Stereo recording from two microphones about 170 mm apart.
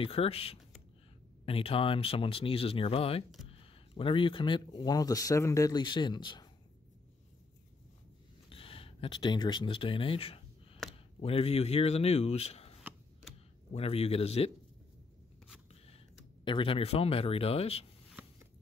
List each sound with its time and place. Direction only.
0.0 s speech: 35° left (ahead or behind)
8.5 s a sound: 30° left (ahead or behind)
11.1 s speech: 35° left (ahead or behind)
13.7 s speech: 35° left (ahead or behind)
16.4 s speech: 30° left (ahead or behind)